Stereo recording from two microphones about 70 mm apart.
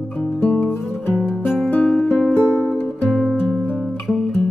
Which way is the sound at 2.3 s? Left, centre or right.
Left.